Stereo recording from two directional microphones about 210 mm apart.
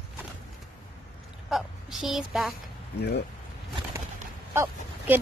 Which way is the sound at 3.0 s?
50° left (ahead or behind).